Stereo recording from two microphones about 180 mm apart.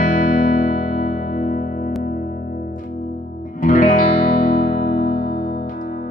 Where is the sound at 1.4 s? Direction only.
45° left (ahead or behind).